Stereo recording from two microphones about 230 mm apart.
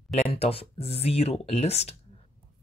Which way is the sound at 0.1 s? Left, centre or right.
Left.